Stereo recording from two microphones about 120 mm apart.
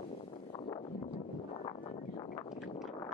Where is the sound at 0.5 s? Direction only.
40° left (ahead or behind).